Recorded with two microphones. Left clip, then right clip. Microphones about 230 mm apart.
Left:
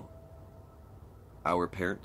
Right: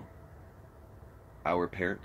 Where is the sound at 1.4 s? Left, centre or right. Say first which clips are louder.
Even; centre.